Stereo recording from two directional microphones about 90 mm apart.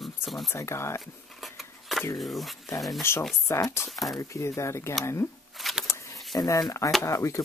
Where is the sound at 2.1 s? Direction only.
Centre (ahead or behind).